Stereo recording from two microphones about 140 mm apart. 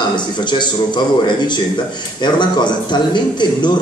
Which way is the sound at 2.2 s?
30° left (ahead or behind).